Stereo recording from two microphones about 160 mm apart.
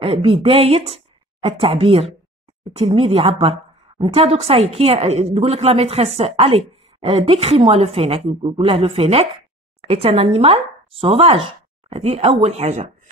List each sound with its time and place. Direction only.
0.0 s speech: 35° right (ahead or behind)